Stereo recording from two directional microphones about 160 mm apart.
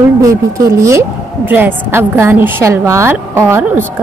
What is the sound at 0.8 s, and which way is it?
A woman's voice, 15° right (ahead or behind).